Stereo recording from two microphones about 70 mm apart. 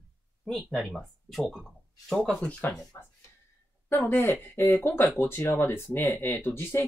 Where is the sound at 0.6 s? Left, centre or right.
Centre.